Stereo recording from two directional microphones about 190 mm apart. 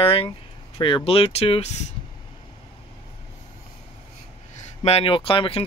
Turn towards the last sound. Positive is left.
turn(degrees=30)  # may be behind; listen again after turning